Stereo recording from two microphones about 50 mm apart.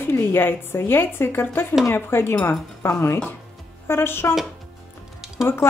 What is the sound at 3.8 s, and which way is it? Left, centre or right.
Speech, left.